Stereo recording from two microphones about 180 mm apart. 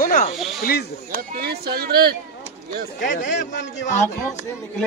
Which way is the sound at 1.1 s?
60° right (ahead or behind).